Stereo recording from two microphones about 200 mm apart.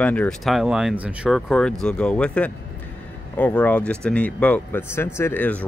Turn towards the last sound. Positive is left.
turn(degrees=10)  # may be behind; listen again after turning